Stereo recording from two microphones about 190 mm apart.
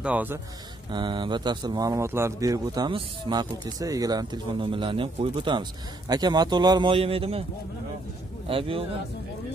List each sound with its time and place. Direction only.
0.0 s speech: 10° right (ahead or behind)
0.9 s speech: 25° right (ahead or behind)
8.5 s speech: 30° right (ahead or behind)